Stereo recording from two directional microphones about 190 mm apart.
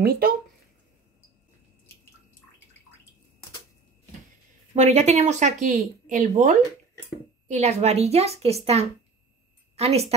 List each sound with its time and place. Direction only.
0.0 s speech: 55° right (ahead or behind)
4.7 s speech: 35° right (ahead or behind)